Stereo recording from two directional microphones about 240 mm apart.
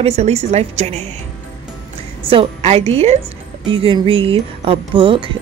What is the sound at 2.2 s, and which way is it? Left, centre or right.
A woman's voice, right.